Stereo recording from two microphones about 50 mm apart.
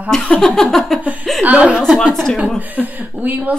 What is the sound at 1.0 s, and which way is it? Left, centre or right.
Speech, right.